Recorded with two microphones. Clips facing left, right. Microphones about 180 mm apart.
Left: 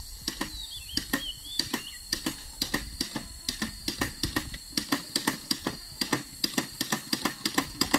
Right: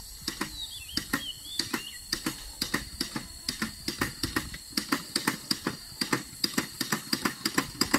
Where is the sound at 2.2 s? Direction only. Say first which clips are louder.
Left 1 dB; 25° left (ahead or behind).